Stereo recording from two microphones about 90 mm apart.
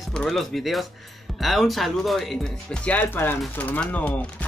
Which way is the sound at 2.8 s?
20° left (ahead or behind).